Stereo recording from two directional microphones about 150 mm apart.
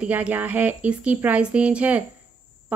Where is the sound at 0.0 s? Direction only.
10° right (ahead or behind).